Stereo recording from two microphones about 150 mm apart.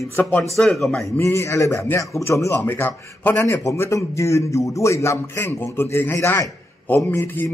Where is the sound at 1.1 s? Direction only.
15° left (ahead or behind).